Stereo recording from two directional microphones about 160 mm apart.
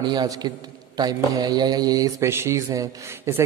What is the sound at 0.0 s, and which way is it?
A man's voice, 25° right (ahead or behind).